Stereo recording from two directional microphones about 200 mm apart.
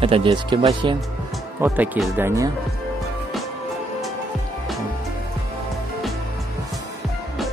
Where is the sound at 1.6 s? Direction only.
10° right (ahead or behind).